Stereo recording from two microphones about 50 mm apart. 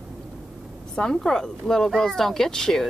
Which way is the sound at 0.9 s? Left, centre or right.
Centre.